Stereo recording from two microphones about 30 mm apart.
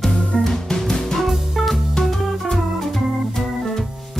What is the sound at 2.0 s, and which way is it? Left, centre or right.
Organ, centre.